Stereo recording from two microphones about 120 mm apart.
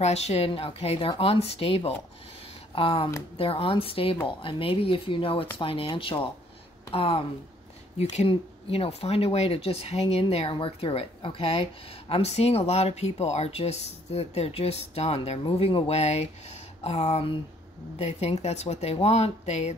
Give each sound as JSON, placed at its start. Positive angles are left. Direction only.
{"t": 0.0, "sound": "speech", "side_deg": 65}
{"t": 0.5, "sound": "speech", "side_deg": 50}
{"t": 8.0, "sound": "speech", "side_deg": 60}